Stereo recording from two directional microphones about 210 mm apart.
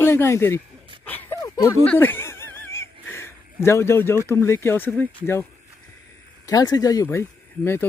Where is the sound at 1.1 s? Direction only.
10° left (ahead or behind).